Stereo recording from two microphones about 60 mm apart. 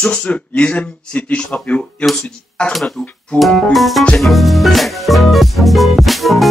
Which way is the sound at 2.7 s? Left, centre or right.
Centre.